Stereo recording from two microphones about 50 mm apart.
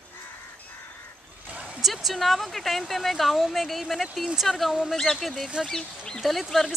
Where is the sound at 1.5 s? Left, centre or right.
Right.